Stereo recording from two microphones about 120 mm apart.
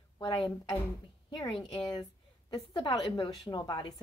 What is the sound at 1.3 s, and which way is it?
Speech, 35° left (ahead or behind).